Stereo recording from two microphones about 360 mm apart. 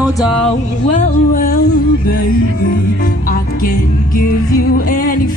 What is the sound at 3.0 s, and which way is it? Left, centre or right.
Music, left.